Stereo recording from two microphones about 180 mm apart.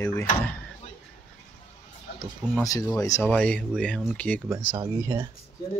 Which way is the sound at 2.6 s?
20° left (ahead or behind).